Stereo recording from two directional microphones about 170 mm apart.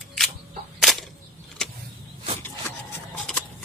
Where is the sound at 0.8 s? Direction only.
Centre (ahead or behind).